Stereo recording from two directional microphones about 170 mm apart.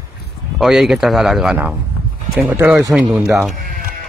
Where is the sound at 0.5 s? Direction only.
Centre (ahead or behind).